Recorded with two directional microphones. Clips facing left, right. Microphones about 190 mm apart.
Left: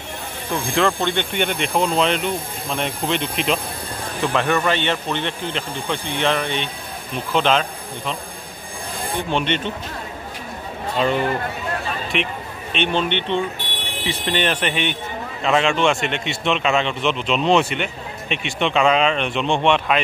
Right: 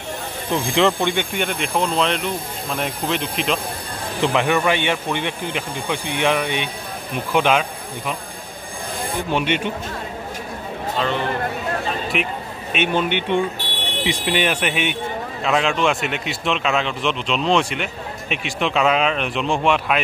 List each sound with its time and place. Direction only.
0.5 s speech: 20° right (ahead or behind)
1.3 s a man's voice: centre (ahead or behind)
4.2 s speech: 15° right (ahead or behind)
9.3 s speech: 10° right (ahead or behind)
12.1 s a man's voice: 5° right (ahead or behind)